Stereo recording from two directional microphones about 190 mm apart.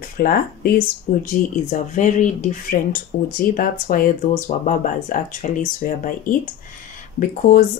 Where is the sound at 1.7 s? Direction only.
40° left (ahead or behind).